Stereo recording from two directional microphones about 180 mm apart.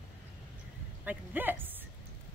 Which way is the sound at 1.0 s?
10° right (ahead or behind).